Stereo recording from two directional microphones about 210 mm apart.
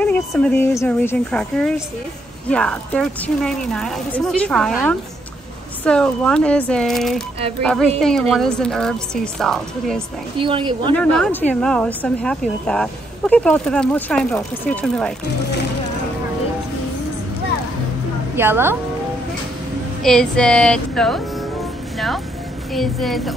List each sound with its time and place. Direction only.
0.0 s a woman's voice: 5° left (ahead or behind)
10.4 s a woman's voice: 25° right (ahead or behind)
11.0 s a woman's voice: 5° left (ahead or behind)
18.3 s a woman's voice: 10° right (ahead or behind)
20.0 s a woman's voice: 5° left (ahead or behind)